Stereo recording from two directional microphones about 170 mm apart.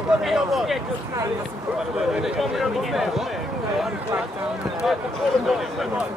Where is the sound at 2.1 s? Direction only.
Centre (ahead or behind).